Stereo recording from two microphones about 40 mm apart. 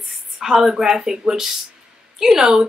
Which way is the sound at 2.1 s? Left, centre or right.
Centre.